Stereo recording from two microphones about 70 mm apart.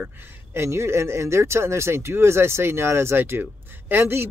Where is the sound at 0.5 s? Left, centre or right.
Right.